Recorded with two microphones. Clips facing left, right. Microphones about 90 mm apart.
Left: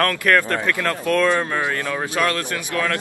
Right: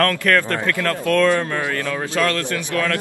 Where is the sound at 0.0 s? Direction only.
15° left (ahead or behind).